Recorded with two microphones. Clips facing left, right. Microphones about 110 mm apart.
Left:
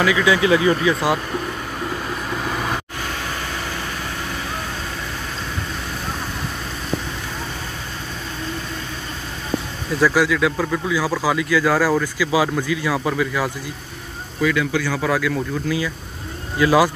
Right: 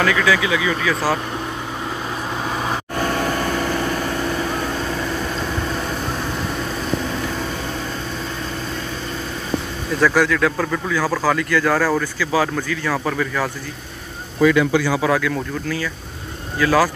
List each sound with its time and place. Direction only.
0.0 s speech: 10° left (ahead or behind)
0.4 s speech: 35° left (ahead or behind)
0.8 s speech: 15° left (ahead or behind)
2.4 s vehicle: 5° right (ahead or behind)
9.9 s speech: 5° left (ahead or behind)
14.4 s speech: 35° right (ahead or behind)
15.0 s speech: centre (ahead or behind)
16.5 s speech: 20° left (ahead or behind)